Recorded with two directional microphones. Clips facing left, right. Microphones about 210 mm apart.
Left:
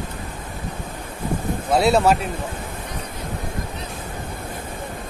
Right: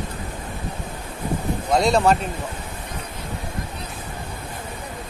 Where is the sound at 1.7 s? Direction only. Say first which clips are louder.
Left 1 dB; 5° left (ahead or behind).